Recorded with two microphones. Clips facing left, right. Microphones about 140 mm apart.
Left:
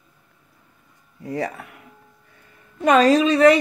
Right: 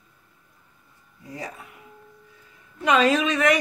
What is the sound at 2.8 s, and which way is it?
Speech, 40° left (ahead or behind).